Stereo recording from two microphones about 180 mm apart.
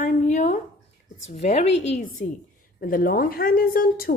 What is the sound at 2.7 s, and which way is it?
Speech, 55° left (ahead or behind).